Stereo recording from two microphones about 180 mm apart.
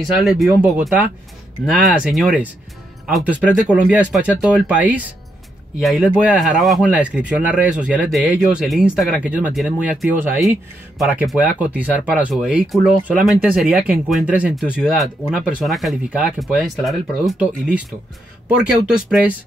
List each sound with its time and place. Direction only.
0.0 s speech: centre (ahead or behind)
19.0 s speech: centre (ahead or behind)